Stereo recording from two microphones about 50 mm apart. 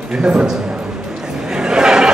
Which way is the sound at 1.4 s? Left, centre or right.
Centre.